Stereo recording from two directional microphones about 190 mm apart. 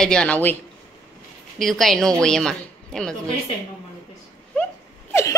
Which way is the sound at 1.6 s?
Centre (ahead or behind).